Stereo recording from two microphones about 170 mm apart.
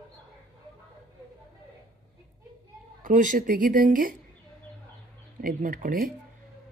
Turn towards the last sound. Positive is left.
turn(degrees=-55)  # may be behind; listen again after turning